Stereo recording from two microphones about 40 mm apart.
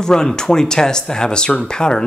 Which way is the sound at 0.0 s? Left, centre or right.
Centre.